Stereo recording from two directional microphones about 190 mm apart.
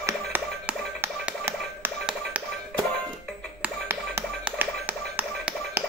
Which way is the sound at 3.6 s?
10° right (ahead or behind).